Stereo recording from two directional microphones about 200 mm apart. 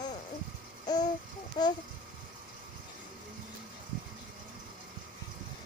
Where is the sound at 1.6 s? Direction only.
25° left (ahead or behind).